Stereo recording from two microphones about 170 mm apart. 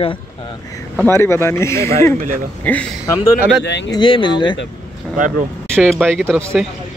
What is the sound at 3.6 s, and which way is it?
Speech, 90° left.